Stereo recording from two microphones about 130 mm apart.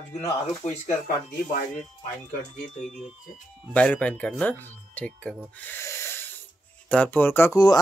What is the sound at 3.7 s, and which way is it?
Speech, 10° left (ahead or behind).